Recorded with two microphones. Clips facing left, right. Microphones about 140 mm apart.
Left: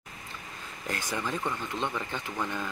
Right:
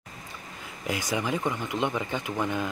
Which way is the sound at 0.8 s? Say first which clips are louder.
Right 4 dB; 10° right (ahead or behind).